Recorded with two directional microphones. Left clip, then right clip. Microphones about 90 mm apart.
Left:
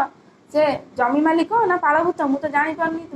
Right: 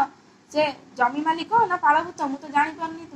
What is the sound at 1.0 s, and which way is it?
Speech, 30° left (ahead or behind).